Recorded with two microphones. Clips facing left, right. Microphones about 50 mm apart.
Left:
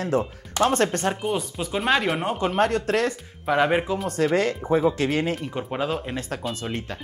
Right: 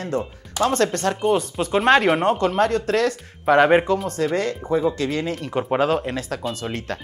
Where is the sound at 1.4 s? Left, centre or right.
Centre.